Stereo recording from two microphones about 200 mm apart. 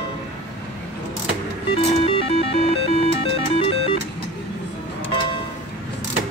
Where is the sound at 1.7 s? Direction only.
30° left (ahead or behind).